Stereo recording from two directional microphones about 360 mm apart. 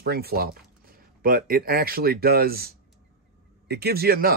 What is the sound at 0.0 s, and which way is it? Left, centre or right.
Speech, right.